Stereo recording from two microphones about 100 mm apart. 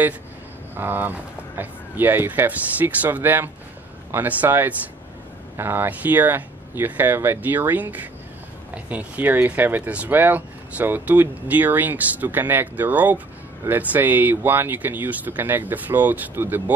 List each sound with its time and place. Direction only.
0.7 s speech: 20° right (ahead or behind)